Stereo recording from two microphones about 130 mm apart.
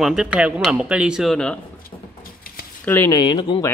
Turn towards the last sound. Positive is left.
turn(degrees=35)  # may be behind; listen again after turning